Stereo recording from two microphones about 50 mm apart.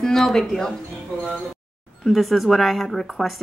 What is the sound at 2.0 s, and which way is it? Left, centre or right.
A woman's voice, centre.